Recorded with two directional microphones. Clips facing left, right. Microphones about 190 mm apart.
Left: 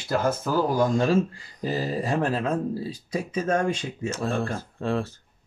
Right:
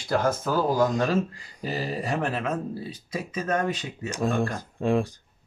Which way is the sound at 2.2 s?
30° left (ahead or behind).